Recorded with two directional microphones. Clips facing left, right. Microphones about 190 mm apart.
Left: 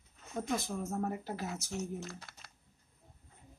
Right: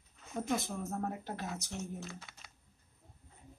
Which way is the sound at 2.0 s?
Centre (ahead or behind).